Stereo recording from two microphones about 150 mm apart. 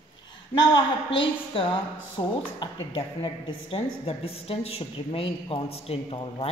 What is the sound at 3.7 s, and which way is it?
A woman's voice, 40° left (ahead or behind).